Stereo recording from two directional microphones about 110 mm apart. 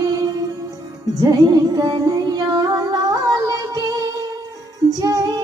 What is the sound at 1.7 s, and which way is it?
Singing, 40° right (ahead or behind).